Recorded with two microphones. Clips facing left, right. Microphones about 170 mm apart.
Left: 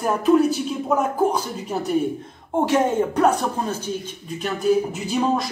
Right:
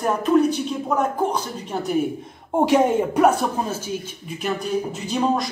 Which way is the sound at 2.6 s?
15° right (ahead or behind).